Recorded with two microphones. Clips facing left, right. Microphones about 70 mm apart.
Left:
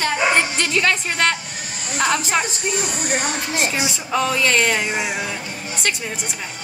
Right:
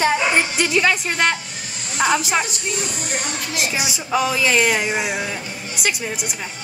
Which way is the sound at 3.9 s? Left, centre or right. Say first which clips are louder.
Right 1 dB; centre.